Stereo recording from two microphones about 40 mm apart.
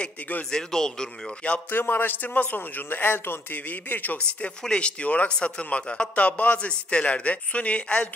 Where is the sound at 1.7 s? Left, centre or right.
Left.